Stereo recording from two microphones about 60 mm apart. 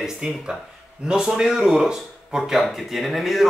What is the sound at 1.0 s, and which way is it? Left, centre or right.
Speech, centre.